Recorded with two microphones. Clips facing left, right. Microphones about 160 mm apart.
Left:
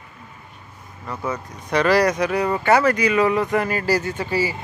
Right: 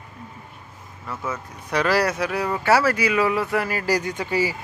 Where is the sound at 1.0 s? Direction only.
15° left (ahead or behind).